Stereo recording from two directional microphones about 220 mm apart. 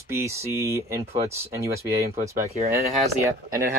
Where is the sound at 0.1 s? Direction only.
10° right (ahead or behind).